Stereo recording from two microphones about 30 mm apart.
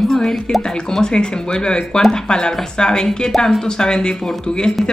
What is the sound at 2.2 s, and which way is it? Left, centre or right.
Speech, left.